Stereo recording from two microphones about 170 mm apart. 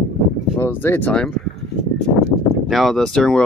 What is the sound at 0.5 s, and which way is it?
Speech, 15° left (ahead or behind).